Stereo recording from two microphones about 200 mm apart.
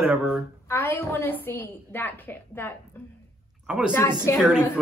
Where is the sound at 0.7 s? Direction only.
15° left (ahead or behind).